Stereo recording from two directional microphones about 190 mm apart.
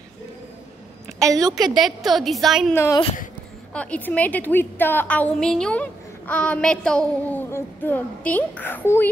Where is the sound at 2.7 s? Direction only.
15° left (ahead or behind).